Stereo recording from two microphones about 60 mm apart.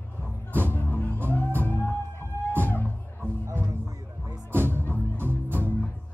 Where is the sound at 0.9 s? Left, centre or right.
Left.